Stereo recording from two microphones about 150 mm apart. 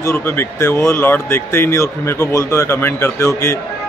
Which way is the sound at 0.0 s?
15° left (ahead or behind).